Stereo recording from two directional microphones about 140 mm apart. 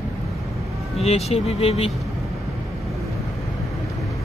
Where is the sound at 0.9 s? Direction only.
50° left (ahead or behind).